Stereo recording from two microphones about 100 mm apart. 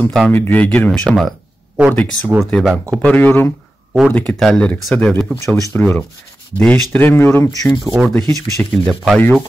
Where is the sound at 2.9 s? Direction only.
10° left (ahead or behind).